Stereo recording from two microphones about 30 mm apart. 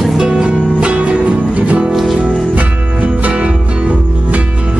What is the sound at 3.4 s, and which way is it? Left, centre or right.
Music, right.